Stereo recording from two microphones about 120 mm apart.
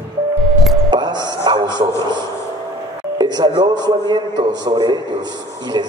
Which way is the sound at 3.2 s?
35° right (ahead or behind).